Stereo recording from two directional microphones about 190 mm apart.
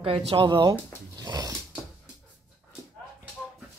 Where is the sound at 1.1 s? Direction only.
20° right (ahead or behind).